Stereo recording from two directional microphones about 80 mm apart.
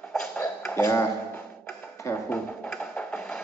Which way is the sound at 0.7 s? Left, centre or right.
Left.